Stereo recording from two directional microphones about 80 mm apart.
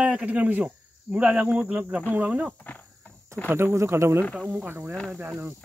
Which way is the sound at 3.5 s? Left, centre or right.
Right.